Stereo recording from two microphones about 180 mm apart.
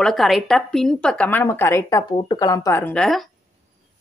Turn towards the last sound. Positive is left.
turn(degrees=0)  # may be behind; listen again after turning